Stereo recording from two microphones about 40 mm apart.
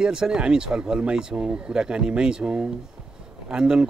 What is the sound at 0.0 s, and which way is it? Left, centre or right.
Speech, centre.